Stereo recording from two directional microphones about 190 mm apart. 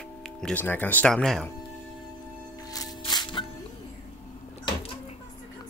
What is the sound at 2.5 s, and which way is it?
Music, 20° left (ahead or behind).